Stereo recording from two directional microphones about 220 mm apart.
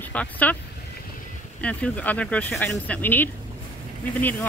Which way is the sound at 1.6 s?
5° left (ahead or behind).